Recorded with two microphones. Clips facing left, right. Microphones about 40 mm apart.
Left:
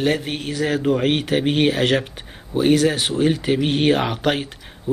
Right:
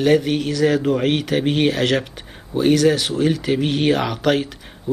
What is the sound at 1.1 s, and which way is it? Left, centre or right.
Speech, centre.